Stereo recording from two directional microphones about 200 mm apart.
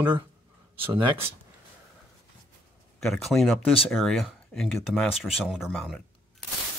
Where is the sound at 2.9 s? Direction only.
Centre (ahead or behind).